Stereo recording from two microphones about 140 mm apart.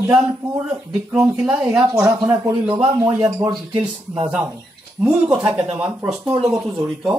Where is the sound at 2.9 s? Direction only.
25° right (ahead or behind).